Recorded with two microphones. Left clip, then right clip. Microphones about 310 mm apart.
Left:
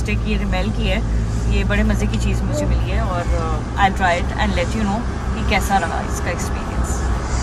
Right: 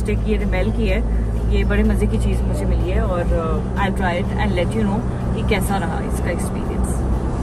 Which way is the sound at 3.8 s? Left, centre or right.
Centre.